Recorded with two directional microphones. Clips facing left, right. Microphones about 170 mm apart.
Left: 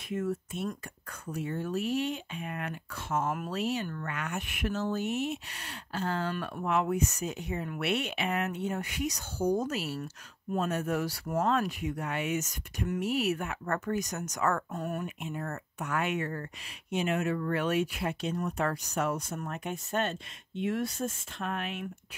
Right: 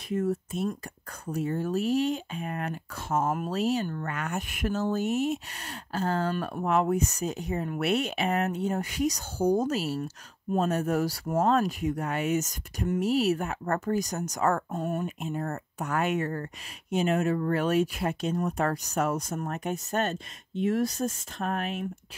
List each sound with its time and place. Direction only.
0.1 s speech: 40° right (ahead or behind)